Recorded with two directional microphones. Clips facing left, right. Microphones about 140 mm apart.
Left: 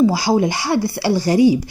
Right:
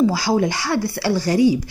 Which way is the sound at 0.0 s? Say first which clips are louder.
Left 2 dB; 15° left (ahead or behind).